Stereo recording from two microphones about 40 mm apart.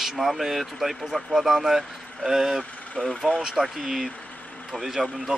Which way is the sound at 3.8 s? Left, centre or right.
Centre.